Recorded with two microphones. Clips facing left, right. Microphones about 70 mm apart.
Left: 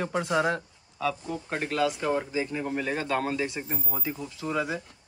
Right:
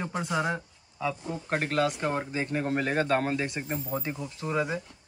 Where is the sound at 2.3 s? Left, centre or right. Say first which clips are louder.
Right 1 dB; right.